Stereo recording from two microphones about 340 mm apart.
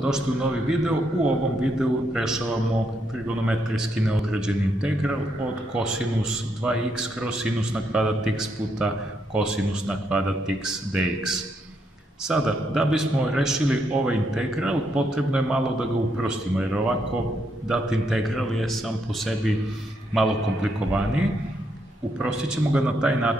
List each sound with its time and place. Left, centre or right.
0.0 s a man's voice: centre
4.3 s a man's voice: centre
22.2 s a man's voice: centre